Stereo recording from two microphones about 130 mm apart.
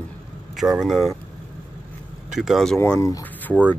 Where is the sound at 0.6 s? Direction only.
5° right (ahead or behind).